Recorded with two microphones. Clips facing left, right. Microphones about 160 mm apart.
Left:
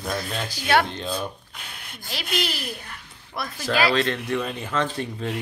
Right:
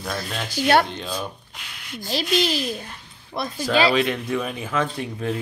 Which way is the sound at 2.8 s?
25° right (ahead or behind).